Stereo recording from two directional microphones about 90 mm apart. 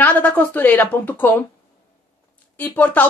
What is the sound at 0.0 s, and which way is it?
Speech, 20° left (ahead or behind).